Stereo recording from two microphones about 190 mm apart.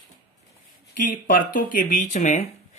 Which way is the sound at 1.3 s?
45° left (ahead or behind).